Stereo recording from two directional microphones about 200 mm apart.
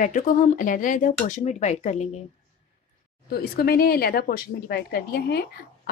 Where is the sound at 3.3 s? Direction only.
50° left (ahead or behind).